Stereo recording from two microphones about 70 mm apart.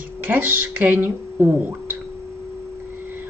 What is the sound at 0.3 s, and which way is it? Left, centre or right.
Speech, right.